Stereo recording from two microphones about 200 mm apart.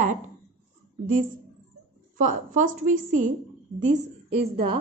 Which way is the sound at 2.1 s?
40° right (ahead or behind).